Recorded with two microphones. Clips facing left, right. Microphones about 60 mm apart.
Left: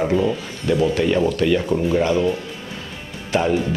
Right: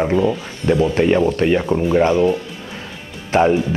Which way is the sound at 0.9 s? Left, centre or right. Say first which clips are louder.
Right 3 dB; right.